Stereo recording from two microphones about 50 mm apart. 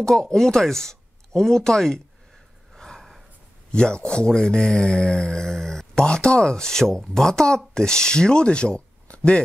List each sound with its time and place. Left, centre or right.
0.0 s speech: centre
2.8 s gasp: centre
3.7 s speech: centre